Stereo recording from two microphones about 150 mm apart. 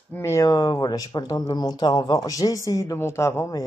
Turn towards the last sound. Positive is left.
turn(degrees=20)  # may be behind; listen again after turning